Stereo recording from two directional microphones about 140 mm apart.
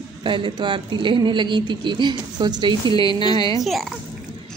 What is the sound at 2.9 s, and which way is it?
Speech, 30° left (ahead or behind).